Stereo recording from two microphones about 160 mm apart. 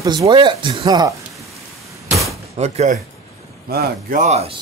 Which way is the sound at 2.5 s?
40° right (ahead or behind).